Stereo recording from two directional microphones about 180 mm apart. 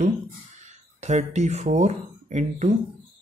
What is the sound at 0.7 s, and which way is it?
Speech, 40° right (ahead or behind).